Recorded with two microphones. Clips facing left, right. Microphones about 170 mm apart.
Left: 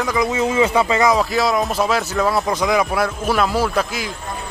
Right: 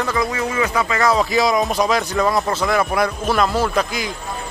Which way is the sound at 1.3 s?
Centre (ahead or behind).